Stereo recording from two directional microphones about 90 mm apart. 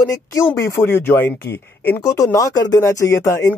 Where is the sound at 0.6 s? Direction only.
25° left (ahead or behind).